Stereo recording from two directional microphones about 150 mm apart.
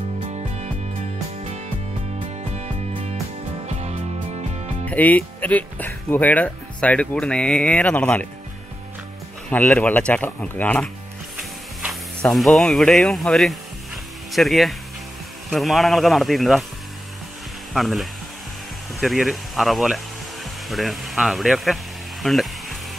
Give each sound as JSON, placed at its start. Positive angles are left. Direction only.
{"t": 2.5, "sound": "music", "side_deg": -40}
{"t": 4.8, "sound": "speech", "side_deg": 10}
{"t": 9.5, "sound": "speech", "side_deg": 10}
{"t": 11.3, "sound": "printer", "side_deg": -5}
{"t": 12.2, "sound": "speech", "side_deg": 0}
{"t": 17.7, "sound": "speech", "side_deg": 0}
{"t": 22.2, "sound": "music", "side_deg": 0}